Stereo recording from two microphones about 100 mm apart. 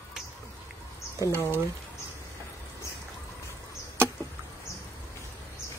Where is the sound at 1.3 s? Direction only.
20° left (ahead or behind).